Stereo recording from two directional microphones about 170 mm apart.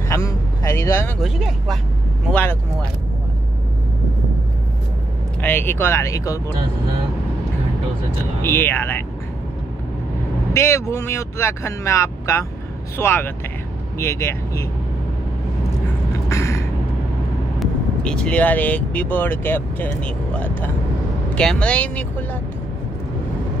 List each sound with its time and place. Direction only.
0.1 s vehicle: 15° left (ahead or behind)
1.2 s speech: centre (ahead or behind)
5.4 s speech: 10° left (ahead or behind)
8.4 s speech: 10° left (ahead or behind)
10.5 s speech: 15° left (ahead or behind)
16.1 s a sound: 15° left (ahead or behind)
17.6 s speech: 5° left (ahead or behind)